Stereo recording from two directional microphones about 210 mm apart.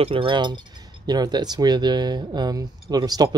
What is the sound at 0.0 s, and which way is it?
Speech, 25° right (ahead or behind).